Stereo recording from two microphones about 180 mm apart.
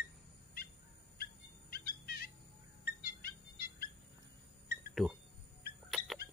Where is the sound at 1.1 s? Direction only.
60° left (ahead or behind).